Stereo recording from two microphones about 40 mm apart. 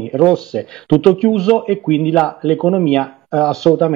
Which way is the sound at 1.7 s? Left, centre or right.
Centre.